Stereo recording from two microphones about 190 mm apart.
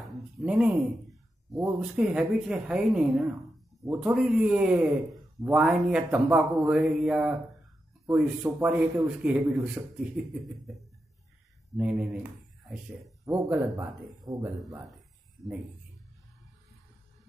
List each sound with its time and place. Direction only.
0.4 s a man's voice: 5° right (ahead or behind)